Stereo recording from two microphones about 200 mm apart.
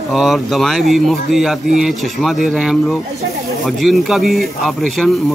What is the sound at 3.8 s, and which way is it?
Speech, centre (ahead or behind).